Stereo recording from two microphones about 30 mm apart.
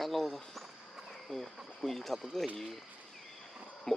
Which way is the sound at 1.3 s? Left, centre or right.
Left.